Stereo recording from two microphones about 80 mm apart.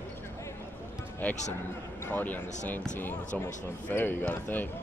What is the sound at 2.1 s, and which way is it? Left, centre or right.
Speech, left.